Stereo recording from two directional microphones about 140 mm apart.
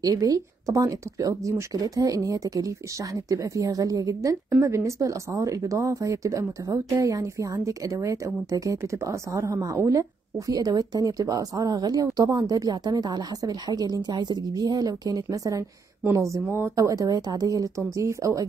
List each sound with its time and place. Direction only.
0.0 s a woman's voice: 25° right (ahead or behind)